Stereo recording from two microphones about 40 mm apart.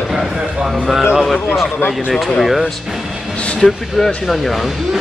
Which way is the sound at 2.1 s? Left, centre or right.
Centre.